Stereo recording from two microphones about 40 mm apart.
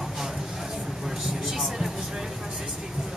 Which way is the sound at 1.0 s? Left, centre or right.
Centre.